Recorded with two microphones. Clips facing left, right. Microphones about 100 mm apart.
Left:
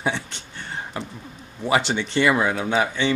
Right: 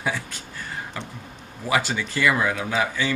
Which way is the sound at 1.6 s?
25° left (ahead or behind).